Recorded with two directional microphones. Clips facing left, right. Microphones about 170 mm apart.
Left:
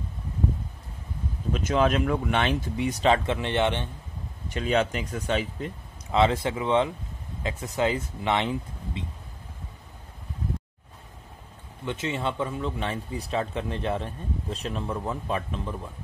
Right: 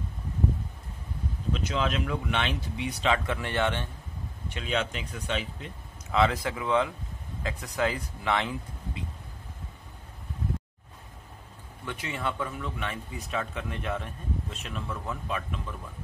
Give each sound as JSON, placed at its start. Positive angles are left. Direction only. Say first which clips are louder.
{"t": 1.5, "sound": "speech", "louder": "left 6 dB", "side_deg": 50}
{"t": 3.3, "sound": "speech", "louder": "left 4 dB", "side_deg": 20}
{"t": 4.5, "sound": "speech", "louder": "left 6 dB", "side_deg": 45}
{"t": 6.1, "sound": "speech", "louder": "left 3 dB", "side_deg": 25}
{"t": 11.8, "sound": "speech", "louder": "left 4 dB", "side_deg": 25}